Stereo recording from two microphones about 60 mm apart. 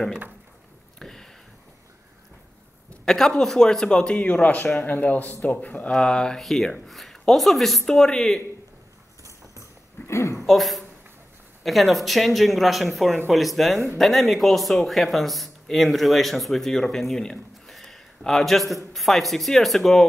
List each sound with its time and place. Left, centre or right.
0.9 s a sound: centre
3.1 s speech: centre
4.3 s a man's voice: left
5.9 s speech: centre
10.0 s speech: left
10.4 s speech: centre